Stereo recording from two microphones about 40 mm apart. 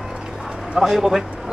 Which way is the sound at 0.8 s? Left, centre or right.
Centre.